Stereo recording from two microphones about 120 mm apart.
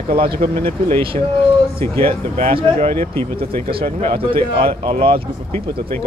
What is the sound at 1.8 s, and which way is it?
Speech, 20° left (ahead or behind).